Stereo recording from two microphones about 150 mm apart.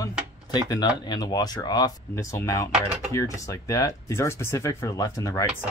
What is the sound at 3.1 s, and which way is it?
Speech, 20° left (ahead or behind).